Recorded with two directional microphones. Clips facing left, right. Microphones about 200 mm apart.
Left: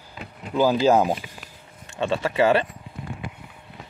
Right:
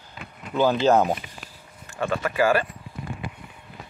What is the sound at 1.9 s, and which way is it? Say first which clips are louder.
Speech: left 2 dB; 25° left (ahead or behind).